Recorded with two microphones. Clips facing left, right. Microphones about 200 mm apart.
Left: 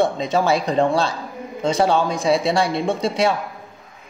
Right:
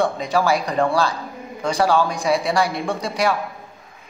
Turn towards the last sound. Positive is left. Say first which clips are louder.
# left 2 dB
turn(degrees=25)  # may be behind; listen again after turning